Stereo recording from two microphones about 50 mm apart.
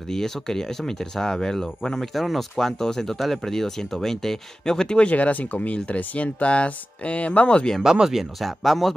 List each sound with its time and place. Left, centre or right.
0.1 s speech: centre
7.8 s speech: centre